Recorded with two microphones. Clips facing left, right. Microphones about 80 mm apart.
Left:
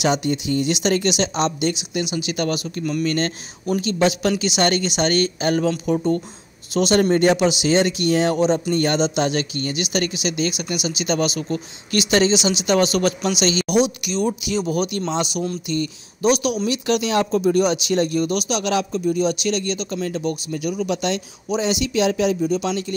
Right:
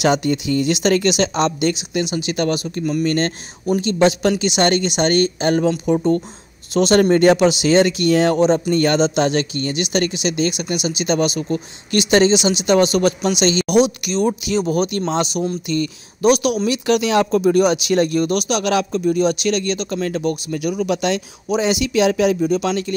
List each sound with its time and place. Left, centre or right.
0.0 s speech: right
6.7 s speech: right
13.7 s speech: right
14.1 s speech: right
15.7 s speech: right